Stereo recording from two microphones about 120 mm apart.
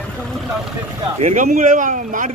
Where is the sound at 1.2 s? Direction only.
80° right.